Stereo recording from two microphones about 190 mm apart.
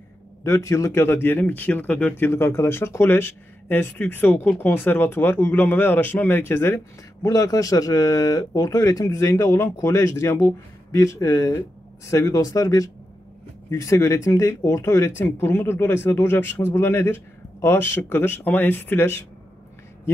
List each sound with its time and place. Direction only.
0.4 s speech: 15° left (ahead or behind)